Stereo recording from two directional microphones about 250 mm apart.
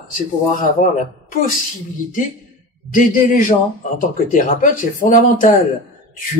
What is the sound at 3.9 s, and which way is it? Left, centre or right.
A man's voice, left.